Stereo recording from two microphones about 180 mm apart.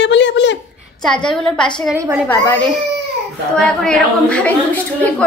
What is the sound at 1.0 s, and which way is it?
A woman's voice, 5° left (ahead or behind).